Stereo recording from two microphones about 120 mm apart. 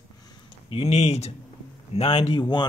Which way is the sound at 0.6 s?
55° left (ahead or behind).